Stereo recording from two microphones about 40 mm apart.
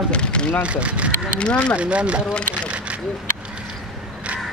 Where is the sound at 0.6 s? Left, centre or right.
Right.